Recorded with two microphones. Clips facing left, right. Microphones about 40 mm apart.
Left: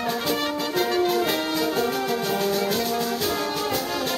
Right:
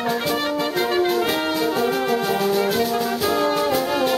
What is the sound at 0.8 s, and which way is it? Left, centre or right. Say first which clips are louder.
Music: right 2 dB; centre.